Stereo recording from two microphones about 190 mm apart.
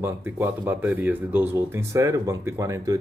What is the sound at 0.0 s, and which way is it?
Speech, 10° right (ahead or behind).